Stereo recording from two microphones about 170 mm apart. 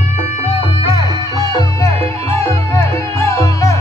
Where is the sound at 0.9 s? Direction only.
20° right (ahead or behind).